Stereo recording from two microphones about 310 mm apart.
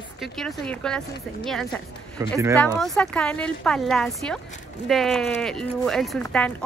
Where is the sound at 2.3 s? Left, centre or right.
Centre.